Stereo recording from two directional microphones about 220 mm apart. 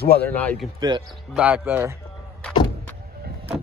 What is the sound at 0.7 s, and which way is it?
Speech, 20° right (ahead or behind).